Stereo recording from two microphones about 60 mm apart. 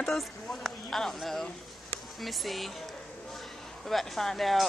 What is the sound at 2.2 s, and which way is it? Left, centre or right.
Speech, centre.